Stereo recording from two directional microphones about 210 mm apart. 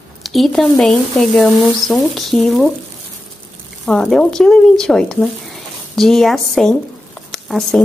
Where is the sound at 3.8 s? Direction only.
5° left (ahead or behind).